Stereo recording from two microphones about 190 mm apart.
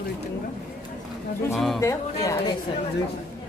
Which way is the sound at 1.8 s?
15° left (ahead or behind).